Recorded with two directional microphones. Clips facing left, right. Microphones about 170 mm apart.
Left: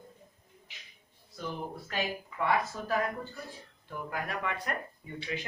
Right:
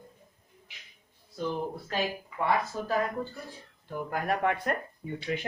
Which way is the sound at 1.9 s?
30° right (ahead or behind).